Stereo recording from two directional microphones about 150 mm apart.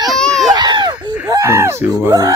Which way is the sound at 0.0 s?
Centre (ahead or behind).